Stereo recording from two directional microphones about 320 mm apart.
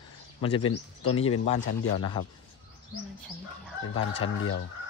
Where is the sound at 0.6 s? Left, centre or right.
Left.